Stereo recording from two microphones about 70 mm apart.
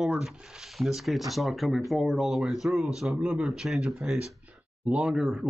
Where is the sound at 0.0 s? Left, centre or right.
Centre.